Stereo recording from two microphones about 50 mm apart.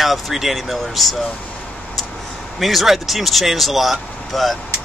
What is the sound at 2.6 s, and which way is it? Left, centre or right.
Speech, centre.